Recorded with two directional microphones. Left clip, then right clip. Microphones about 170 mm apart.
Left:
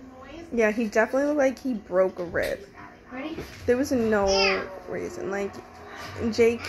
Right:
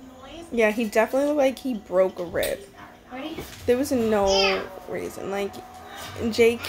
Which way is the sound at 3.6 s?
15° right (ahead or behind).